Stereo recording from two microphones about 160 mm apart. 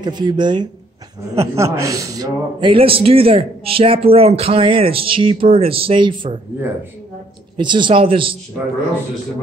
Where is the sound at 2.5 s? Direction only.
35° right (ahead or behind).